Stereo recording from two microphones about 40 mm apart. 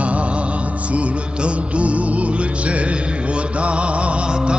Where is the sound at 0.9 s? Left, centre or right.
Right.